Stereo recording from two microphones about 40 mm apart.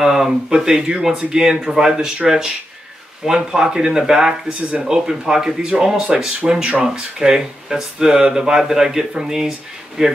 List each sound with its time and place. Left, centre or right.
0.0 s speech: centre
4.5 s speech: right
4.8 s speech: centre
6.4 s speech: right